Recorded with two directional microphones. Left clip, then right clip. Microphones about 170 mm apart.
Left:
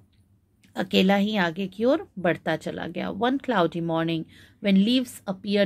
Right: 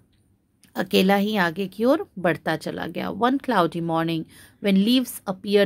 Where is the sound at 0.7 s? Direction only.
35° right (ahead or behind).